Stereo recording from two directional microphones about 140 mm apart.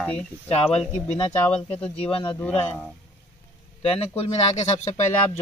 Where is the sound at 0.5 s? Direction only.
45° left (ahead or behind).